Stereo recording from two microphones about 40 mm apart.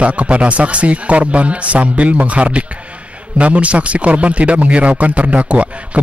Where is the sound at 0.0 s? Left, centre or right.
Right.